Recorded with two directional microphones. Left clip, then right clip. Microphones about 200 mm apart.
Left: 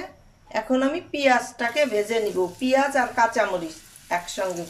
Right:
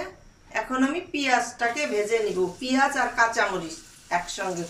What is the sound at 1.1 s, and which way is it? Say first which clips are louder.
Speech: left 5 dB; 35° left (ahead or behind).